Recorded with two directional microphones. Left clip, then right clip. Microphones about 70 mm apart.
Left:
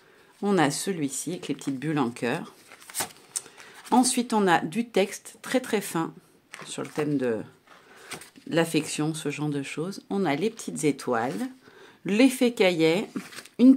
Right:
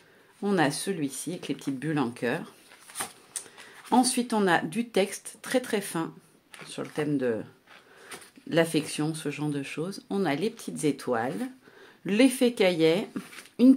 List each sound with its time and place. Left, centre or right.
0.4 s speech: left
1.4 s speech: left
3.9 s speech: left
6.6 s speech: left
8.5 s speech: left